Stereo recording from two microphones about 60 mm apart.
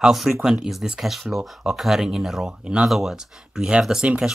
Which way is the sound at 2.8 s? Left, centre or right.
Centre.